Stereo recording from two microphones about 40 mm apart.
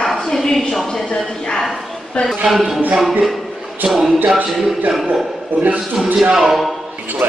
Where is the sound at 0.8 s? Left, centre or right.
Centre.